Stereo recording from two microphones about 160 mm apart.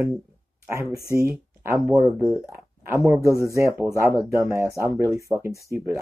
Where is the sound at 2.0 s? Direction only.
Centre (ahead or behind).